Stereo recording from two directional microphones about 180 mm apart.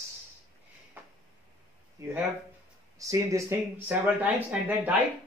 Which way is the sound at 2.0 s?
15° right (ahead or behind).